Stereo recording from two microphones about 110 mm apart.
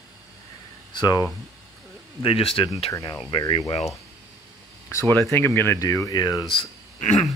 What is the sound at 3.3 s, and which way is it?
Speech, 45° left (ahead or behind).